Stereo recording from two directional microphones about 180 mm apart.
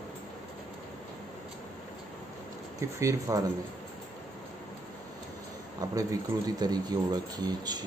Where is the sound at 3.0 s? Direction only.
20° right (ahead or behind).